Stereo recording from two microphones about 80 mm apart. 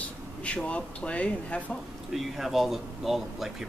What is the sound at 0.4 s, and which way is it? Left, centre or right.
Speech, centre.